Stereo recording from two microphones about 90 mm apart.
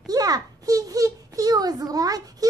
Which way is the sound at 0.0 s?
45° right (ahead or behind).